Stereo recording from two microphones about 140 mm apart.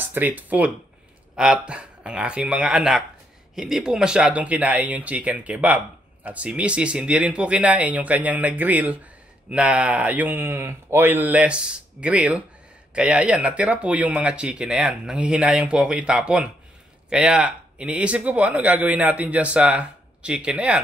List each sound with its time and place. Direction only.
0.0 s speech: 15° right (ahead or behind)